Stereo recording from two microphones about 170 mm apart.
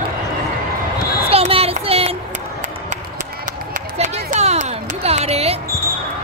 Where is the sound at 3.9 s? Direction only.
40° right (ahead or behind).